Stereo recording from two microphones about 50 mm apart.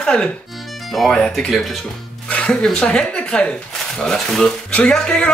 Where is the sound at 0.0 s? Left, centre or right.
Centre.